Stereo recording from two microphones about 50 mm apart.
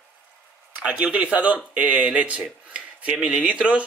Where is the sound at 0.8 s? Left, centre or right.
Right.